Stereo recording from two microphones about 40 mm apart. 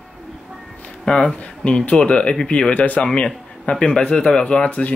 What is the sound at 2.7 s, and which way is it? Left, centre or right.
Speech, left.